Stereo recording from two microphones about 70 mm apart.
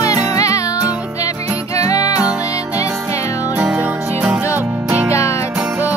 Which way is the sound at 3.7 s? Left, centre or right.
Centre.